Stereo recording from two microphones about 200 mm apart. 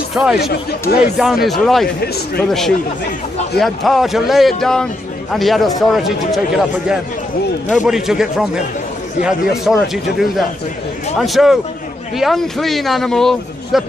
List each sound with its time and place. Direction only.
0.1 s speech: 5° right (ahead or behind)
0.4 s speech: 50° left (ahead or behind)
1.1 s a man's voice: centre (ahead or behind)
3.5 s a man's voice: centre (ahead or behind)
11.1 s a man's voice: centre (ahead or behind)